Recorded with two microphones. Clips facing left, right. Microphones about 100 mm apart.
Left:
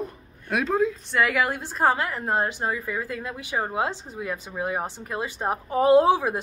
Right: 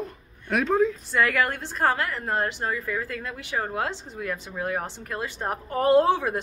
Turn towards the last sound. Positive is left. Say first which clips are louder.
# left 2 dB
turn(degrees=10)  # may be behind; listen again after turning